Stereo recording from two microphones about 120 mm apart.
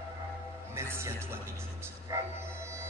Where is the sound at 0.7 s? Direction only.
20° right (ahead or behind).